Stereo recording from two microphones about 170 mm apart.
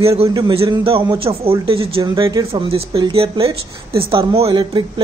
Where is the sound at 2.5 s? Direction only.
35° right (ahead or behind).